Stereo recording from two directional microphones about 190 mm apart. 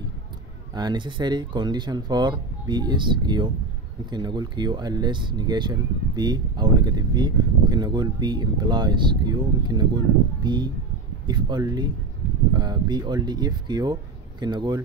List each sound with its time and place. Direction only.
0.7 s speech: 25° right (ahead or behind)